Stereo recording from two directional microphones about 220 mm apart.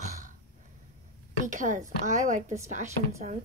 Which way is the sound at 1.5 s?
35° right (ahead or behind).